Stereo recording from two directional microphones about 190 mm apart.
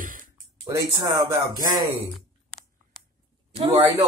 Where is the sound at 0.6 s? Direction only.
20° right (ahead or behind).